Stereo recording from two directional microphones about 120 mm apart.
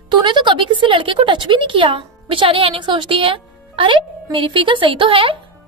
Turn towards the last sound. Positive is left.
turn(degrees=-45)  # may be behind; listen again after turning